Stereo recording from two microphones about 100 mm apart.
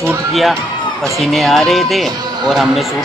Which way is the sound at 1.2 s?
Centre (ahead or behind).